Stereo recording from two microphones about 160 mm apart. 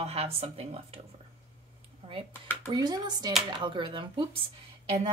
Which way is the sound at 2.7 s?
25° right (ahead or behind).